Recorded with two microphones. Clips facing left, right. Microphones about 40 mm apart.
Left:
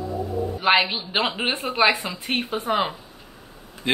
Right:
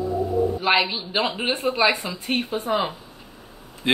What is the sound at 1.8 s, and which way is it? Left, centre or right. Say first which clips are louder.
A woman's voice: left 4 dB; left.